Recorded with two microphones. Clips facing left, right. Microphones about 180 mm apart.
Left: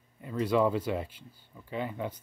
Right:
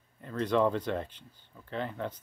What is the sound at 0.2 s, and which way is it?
Speech, 10° left (ahead or behind).